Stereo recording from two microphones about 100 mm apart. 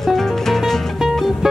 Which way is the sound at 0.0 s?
Centre (ahead or behind).